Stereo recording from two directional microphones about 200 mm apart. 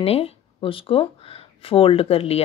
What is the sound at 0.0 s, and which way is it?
Speech, 30° left (ahead or behind).